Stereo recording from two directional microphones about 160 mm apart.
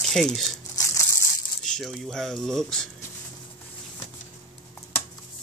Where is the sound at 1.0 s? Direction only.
20° left (ahead or behind).